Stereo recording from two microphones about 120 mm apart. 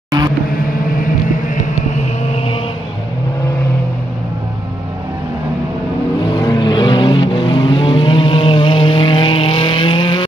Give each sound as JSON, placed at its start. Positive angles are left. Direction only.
{"t": 6.5, "sound": "vehicle", "side_deg": 40}